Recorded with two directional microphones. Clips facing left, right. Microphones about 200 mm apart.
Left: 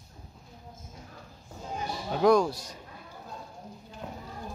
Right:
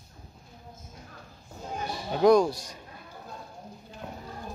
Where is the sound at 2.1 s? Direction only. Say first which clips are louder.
Right 2 dB; 5° left (ahead or behind).